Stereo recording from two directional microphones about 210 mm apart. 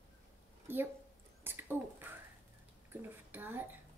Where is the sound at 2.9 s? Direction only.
10° right (ahead or behind).